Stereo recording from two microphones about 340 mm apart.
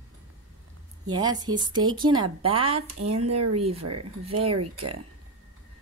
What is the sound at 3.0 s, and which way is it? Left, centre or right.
Speech, right.